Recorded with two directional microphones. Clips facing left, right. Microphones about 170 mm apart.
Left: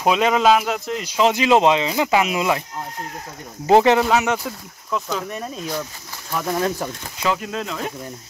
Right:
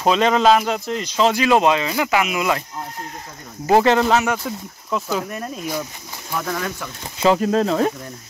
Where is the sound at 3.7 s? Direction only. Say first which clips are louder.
Left 1 dB; 15° left (ahead or behind).